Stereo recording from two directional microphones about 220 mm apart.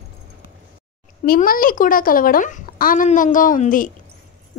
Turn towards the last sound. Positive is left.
turn(degrees=35)  # may be behind; listen again after turning